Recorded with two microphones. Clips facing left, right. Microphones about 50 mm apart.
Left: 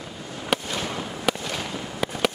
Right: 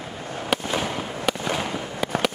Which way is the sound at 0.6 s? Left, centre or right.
Centre.